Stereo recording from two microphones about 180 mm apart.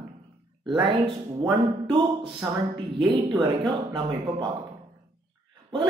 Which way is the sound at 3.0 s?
25° right (ahead or behind).